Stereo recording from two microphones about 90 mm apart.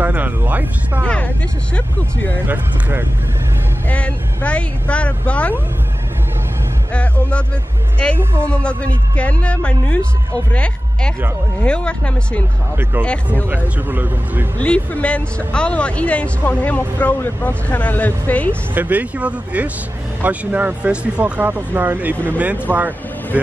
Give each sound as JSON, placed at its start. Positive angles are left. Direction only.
{"t": 0.0, "sound": "speech", "side_deg": -20}
{"t": 1.0, "sound": "speech", "side_deg": 10}
{"t": 2.4, "sound": "speech", "side_deg": -25}
{"t": 3.9, "sound": "speech", "side_deg": 15}
{"t": 6.9, "sound": "speech", "side_deg": 15}
{"t": 8.5, "sound": "speech", "side_deg": 15}
{"t": 13.8, "sound": "speech", "side_deg": -20}
{"t": 14.6, "sound": "speech", "side_deg": 15}
{"t": 18.8, "sound": "speech", "side_deg": -15}